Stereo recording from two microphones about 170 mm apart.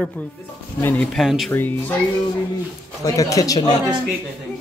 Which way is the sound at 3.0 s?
20° left (ahead or behind).